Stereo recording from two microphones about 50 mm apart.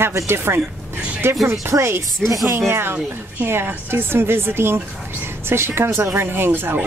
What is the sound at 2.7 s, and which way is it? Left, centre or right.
A woman's voice, right.